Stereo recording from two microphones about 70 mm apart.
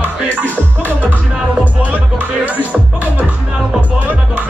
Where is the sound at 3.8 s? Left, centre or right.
Right.